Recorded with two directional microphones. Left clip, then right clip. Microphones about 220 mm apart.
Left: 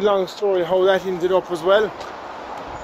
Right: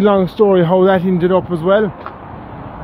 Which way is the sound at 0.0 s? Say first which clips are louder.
Right 5 dB; 15° right (ahead or behind).